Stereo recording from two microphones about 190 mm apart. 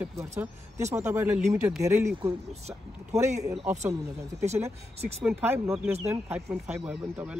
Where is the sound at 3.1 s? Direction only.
35° right (ahead or behind).